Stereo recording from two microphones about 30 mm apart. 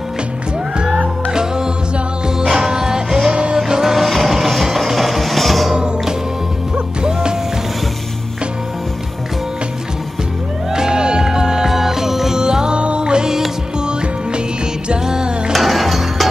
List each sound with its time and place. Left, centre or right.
1.3 s music: right; by 5.7 s centre
7.0 s music: right
10.7 s music: right
12.4 s music: right
15.5 s music: centre